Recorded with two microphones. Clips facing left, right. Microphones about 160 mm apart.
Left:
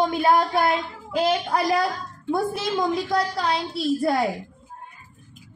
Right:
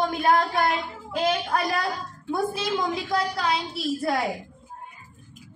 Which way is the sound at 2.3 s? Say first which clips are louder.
Left 2 dB; centre (ahead or behind).